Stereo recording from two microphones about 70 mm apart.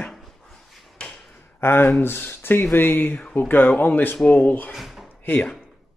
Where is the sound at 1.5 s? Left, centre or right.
Left.